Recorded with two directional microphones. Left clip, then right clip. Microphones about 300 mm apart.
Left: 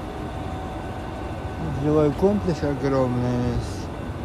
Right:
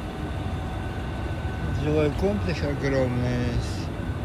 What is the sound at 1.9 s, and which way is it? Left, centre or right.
Speech, left.